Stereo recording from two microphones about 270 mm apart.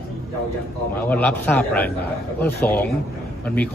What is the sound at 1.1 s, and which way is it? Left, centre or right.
A man's voice, centre.